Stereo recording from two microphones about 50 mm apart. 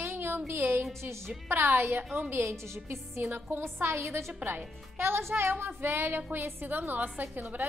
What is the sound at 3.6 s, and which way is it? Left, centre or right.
Speech, right.